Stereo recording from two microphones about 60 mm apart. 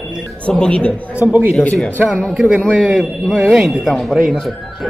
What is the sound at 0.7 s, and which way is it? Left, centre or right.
Speech, centre.